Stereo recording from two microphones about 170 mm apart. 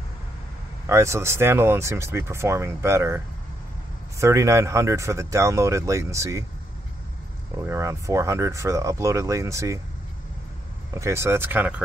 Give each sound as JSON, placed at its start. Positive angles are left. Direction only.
{"t": 0.8, "sound": "speech", "side_deg": -15}
{"t": 4.2, "sound": "speech", "side_deg": -15}
{"t": 7.5, "sound": "speech", "side_deg": -15}
{"t": 11.0, "sound": "speech", "side_deg": -15}